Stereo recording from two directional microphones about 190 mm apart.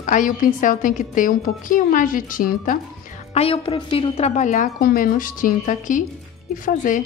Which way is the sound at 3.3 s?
30° left (ahead or behind).